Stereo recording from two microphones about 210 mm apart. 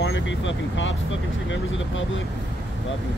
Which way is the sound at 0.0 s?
65° left (ahead or behind).